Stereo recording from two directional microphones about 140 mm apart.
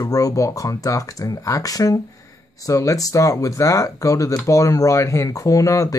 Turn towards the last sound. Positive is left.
turn(degrees=25)  # may be behind; listen again after turning